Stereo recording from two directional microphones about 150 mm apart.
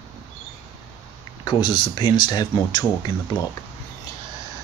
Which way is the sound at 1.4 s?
30° left (ahead or behind).